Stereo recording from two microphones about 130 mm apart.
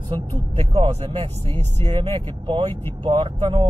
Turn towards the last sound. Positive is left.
turn(degrees=-40)  # may be behind; listen again after turning